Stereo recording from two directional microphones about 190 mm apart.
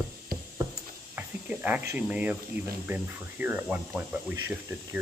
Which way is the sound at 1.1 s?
10° right (ahead or behind).